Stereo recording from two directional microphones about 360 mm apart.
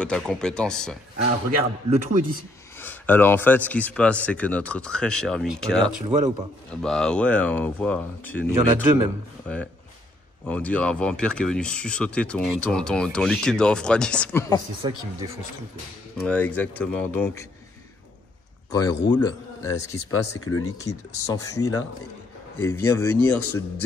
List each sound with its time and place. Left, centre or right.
0.0 s speech: centre
1.9 s a man's voice: right
2.8 s speech: centre
6.0 s speech: centre
6.7 s speech: centre
10.4 s speech: centre
14.8 s speech: centre
16.2 s speech: centre
19.1 s a man's voice: centre
19.8 s speech: left
20.1 s speech: left
20.6 s speech: centre